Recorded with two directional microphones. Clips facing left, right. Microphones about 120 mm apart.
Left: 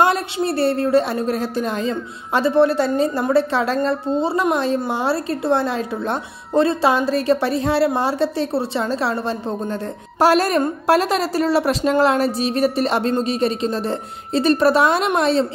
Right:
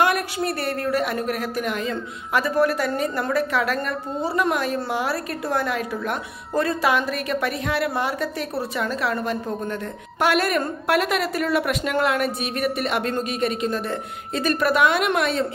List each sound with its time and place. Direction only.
0.0 s a woman's voice: 30° left (ahead or behind)